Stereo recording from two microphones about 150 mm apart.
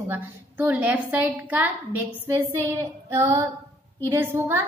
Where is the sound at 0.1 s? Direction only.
10° right (ahead or behind).